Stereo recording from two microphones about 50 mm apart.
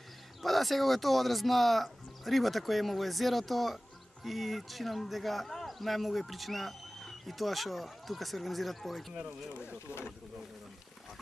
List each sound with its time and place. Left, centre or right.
0.4 s speech: centre
9.1 s speech: right